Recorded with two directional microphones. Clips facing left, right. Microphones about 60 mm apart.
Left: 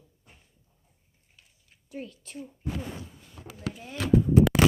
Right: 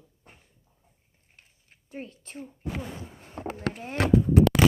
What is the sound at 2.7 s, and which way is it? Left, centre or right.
Speech, right.